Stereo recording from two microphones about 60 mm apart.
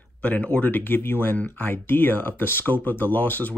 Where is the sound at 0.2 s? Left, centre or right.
Left.